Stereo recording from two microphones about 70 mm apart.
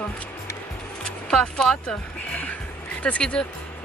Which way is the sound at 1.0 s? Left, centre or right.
Centre.